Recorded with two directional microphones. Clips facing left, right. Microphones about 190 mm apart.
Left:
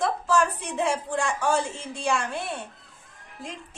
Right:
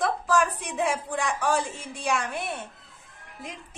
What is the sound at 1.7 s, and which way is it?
A woman's voice, 15° right (ahead or behind).